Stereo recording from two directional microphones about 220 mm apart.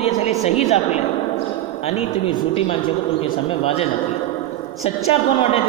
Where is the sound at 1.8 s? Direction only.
25° left (ahead or behind).